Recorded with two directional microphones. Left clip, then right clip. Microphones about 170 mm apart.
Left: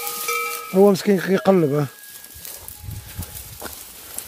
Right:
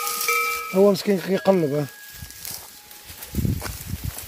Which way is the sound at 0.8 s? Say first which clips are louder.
Left 3 dB; 30° left (ahead or behind).